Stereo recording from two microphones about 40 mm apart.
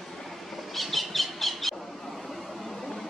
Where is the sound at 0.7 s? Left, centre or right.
Centre.